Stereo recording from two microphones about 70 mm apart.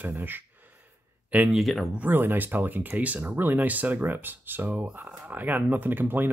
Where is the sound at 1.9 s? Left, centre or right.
Right.